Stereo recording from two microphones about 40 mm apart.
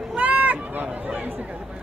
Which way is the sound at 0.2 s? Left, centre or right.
Right.